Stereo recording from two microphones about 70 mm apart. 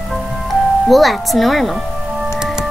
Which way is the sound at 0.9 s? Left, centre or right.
Centre.